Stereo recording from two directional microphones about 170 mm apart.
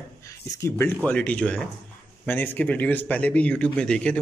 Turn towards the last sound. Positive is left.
turn(degrees=5)  # may be behind; listen again after turning